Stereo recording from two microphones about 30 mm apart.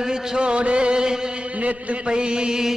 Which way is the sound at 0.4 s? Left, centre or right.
Right.